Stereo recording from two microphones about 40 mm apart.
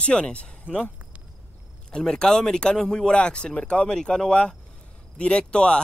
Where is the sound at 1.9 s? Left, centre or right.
Centre.